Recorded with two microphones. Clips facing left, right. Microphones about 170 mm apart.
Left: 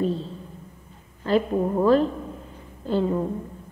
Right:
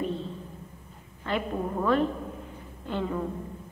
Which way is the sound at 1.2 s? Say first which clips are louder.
Left 8 dB; 35° left (ahead or behind).